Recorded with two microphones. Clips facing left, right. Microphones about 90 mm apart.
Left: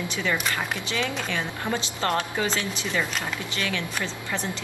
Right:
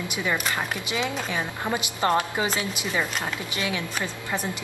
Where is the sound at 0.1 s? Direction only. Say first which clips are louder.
Right 1 dB; 15° right (ahead or behind).